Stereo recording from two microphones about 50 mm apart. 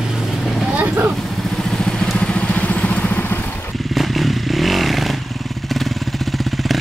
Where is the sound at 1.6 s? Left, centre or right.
Centre; by 3.3 s left.